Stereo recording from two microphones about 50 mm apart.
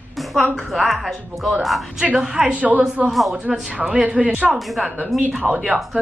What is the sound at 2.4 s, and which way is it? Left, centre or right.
Speech, right.